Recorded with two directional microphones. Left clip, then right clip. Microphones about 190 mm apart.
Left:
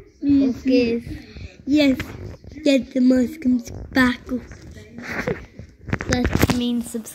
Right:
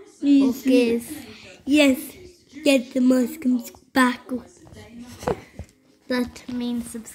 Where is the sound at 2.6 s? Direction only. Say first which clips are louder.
Left 1 dB; 15° right (ahead or behind).